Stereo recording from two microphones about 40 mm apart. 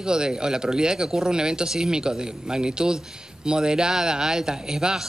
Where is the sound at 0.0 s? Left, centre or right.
Centre.